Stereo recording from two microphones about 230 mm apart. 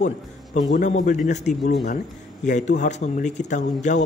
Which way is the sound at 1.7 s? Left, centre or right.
Left.